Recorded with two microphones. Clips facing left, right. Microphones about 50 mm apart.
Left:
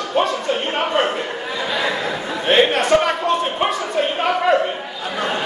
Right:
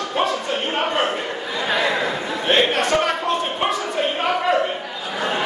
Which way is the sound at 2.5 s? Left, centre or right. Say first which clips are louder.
Left 4 dB; centre.